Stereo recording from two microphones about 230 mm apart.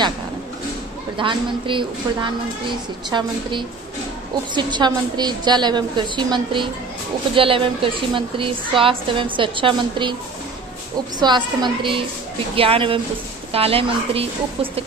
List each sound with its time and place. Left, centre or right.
1.1 s a woman's voice: right
11.1 s a woman's voice: centre